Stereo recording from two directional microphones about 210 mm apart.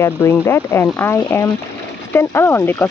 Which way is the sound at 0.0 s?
10° left (ahead or behind).